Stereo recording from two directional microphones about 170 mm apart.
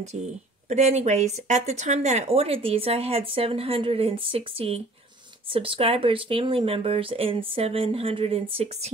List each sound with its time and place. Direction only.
0.0 s speech: 40° right (ahead or behind)